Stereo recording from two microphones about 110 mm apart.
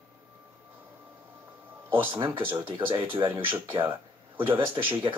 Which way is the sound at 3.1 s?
20° right (ahead or behind).